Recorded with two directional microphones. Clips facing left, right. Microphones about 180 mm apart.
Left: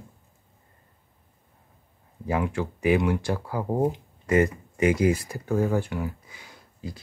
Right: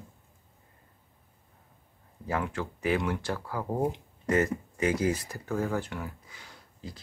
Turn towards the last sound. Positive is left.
turn(degrees=10)  # may be behind; listen again after turning